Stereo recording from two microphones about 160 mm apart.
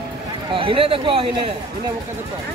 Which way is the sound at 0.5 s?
35° right (ahead or behind).